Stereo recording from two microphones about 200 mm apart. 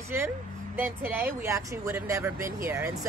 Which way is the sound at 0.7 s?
10° right (ahead or behind).